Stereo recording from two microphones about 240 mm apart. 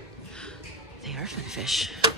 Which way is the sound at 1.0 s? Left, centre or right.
Centre.